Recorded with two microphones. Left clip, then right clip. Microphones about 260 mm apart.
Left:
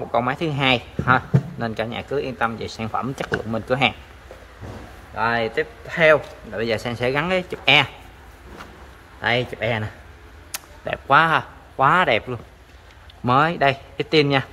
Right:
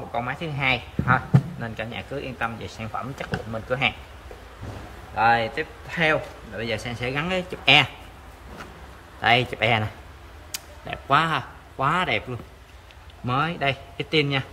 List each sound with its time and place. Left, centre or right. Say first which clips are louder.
0.1 s a man's voice: left 7 dB; left
5.1 s a man's voice: right 1 dB; centre
9.2 s speech: right 2 dB; centre
10.5 s a man's voice: left 6 dB; centre